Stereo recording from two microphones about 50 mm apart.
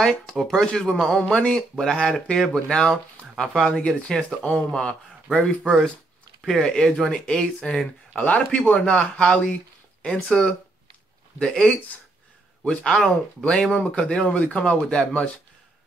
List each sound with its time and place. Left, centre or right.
0.0 s speech: centre
6.6 s speech: centre
8.2 s speech: left
8.5 s speech: centre
12.8 s speech: centre
13.4 s speech: centre